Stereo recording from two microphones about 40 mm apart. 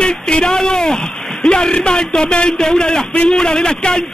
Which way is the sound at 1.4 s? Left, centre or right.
Centre.